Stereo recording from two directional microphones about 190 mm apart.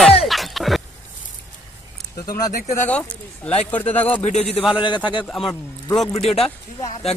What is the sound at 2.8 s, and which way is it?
Speech, 5° left (ahead or behind).